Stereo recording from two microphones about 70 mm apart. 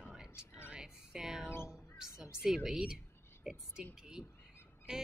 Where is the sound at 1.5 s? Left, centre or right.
Left.